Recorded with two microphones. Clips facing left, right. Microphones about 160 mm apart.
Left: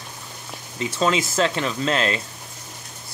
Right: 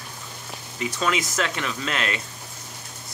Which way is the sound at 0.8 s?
30° left (ahead or behind).